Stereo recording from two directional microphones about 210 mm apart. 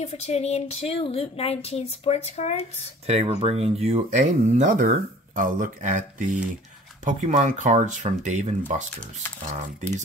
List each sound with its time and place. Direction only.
0.0 s speech: 30° left (ahead or behind)
3.1 s speech: 30° right (ahead or behind)